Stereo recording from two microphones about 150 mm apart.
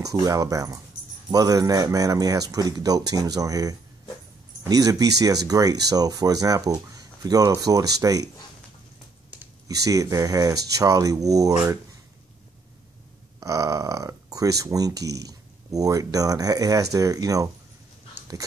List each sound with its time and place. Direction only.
0.0 s speech: 25° right (ahead or behind)
9.7 s speech: 25° right (ahead or behind)
13.4 s speech: 20° right (ahead or behind)